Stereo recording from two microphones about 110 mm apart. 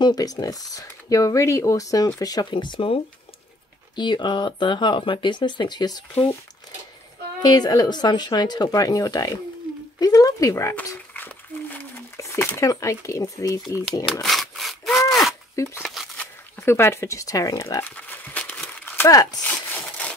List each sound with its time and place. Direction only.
0.0 s speech: 35° left (ahead or behind)
7.4 s speech: 35° left (ahead or behind)
9.9 s a sound: 35° left (ahead or behind); by 11.8 s 20° left (ahead or behind)
12.2 s speech: 25° left (ahead or behind)
14.2 s sawing: centre (ahead or behind)
15.5 s speech: 25° left (ahead or behind)
15.8 s crumpling: centre (ahead or behind)
16.6 s speech: 20° left (ahead or behind)
17.8 s crumpling: 15° left (ahead or behind)
19.0 s speech: 35° left (ahead or behind)
19.4 s a sound: 10° left (ahead or behind)